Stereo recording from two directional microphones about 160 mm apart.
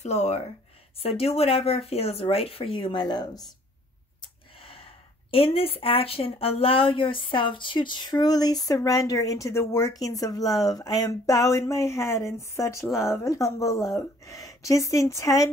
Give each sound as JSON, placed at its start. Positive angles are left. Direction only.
{"t": 0.0, "sound": "speech", "side_deg": 45}
{"t": 4.6, "sound": "a sound", "side_deg": 35}
{"t": 5.3, "sound": "speech", "side_deg": 35}